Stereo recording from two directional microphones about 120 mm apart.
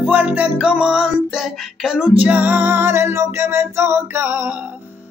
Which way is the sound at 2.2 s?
10° right (ahead or behind).